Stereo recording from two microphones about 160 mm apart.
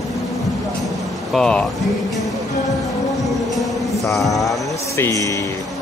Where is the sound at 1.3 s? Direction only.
5° left (ahead or behind).